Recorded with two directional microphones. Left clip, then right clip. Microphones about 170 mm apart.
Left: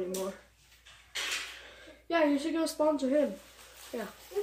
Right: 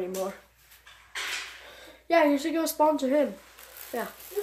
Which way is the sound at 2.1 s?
5° left (ahead or behind).